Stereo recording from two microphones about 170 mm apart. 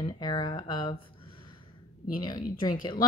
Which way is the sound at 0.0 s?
25° left (ahead or behind).